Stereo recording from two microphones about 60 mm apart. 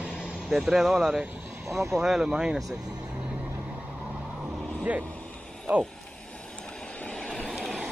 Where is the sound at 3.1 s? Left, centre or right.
Centre.